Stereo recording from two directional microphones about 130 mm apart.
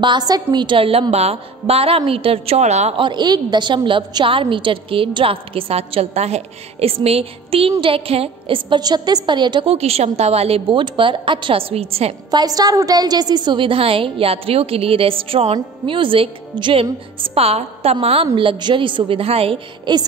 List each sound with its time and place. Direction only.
0.0 s a woman's voice: 35° right (ahead or behind); by 2.9 s 60° right (ahead or behind)
3.0 s a woman's voice: 35° right (ahead or behind)
9.8 s a woman's voice: 55° right (ahead or behind)
12.3 s a woman's voice: 30° right (ahead or behind); by 19.6 s 50° right (ahead or behind)
19.9 s a woman's voice: 35° right (ahead or behind)